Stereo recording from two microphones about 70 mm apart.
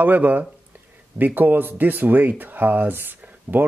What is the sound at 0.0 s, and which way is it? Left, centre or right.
Speech, right.